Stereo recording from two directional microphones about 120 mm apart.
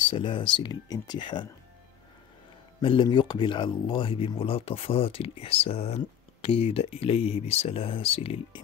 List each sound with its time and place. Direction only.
0.1 s speech: 45° left (ahead or behind)
2.8 s speech: 45° left (ahead or behind)